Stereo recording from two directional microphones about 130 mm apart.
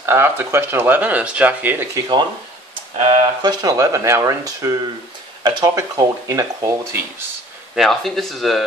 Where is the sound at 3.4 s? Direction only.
30° right (ahead or behind).